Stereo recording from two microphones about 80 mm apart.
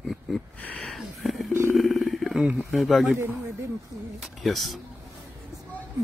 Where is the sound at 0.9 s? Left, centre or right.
Centre.